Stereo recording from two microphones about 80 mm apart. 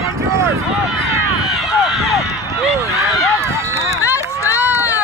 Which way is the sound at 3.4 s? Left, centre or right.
Right.